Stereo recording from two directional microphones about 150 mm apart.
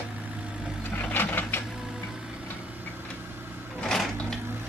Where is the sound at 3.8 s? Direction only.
5° left (ahead or behind).